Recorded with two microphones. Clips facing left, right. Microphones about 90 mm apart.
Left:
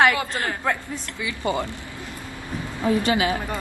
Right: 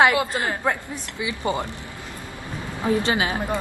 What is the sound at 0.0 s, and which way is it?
Speech, 15° right (ahead or behind).